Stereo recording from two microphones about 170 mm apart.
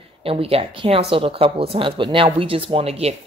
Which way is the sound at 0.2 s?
35° right (ahead or behind).